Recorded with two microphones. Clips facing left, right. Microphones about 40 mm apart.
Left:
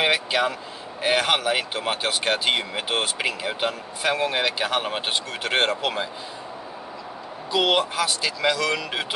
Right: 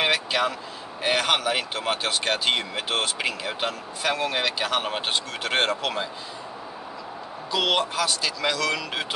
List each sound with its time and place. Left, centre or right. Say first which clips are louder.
0.0 s vehicle: left 2 dB; centre
1.0 s speech: left 2 dB; centre
7.5 s speech: left 2 dB; centre